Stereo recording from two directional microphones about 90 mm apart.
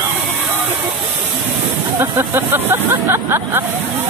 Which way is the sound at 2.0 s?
30° right (ahead or behind).